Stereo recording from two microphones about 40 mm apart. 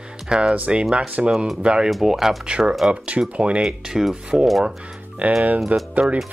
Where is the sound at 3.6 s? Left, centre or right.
Centre.